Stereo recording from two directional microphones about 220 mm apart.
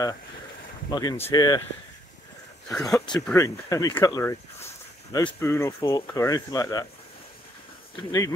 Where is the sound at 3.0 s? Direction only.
15° left (ahead or behind).